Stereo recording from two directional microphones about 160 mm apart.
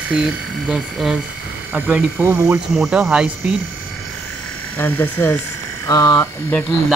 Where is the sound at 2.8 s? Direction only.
Centre (ahead or behind).